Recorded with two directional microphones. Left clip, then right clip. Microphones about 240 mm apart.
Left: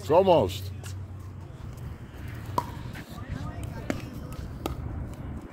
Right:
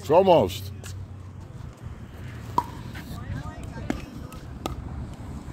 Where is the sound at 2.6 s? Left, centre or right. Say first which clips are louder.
Right 4 dB; left.